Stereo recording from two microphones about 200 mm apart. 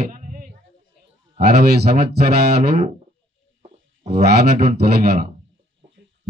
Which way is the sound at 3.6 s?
30° right (ahead or behind).